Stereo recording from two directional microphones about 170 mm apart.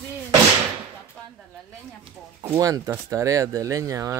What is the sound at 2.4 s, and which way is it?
Speech, 15° right (ahead or behind).